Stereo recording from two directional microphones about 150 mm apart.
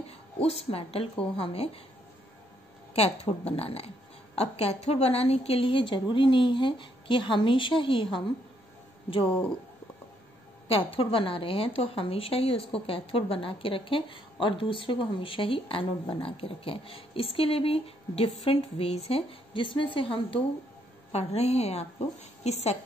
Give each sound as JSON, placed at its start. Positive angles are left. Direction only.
{"t": 0.4, "sound": "a woman's voice", "side_deg": 40}
{"t": 2.9, "sound": "a woman's voice", "side_deg": 45}
{"t": 10.7, "sound": "a woman's voice", "side_deg": 40}